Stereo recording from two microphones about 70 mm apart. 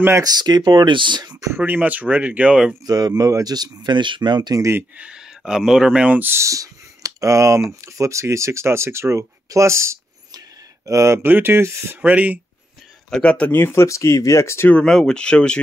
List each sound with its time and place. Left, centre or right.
0.2 s speech: right
1.6 s speech: right
2.8 s speech: right
3.3 s speech: right
3.5 s speech: right
4.9 s speech: centre
6.1 s speech: right
6.4 s speech: right
11.2 s speech: right
12.0 s speech: right
13.1 s speech: centre
13.5 s speech: left
14.9 s speech: centre